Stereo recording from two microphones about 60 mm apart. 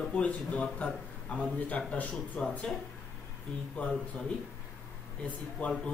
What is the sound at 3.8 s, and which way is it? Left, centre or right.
Speech, left.